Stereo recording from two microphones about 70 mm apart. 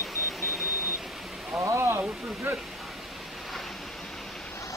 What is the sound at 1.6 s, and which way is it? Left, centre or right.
Speech, right.